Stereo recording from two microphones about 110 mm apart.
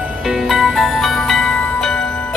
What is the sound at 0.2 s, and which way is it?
Music, 5° right (ahead or behind).